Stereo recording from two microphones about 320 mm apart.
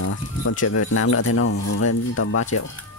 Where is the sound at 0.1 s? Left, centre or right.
Left.